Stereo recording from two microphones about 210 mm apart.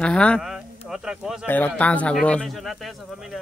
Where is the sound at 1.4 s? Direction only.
10° left (ahead or behind).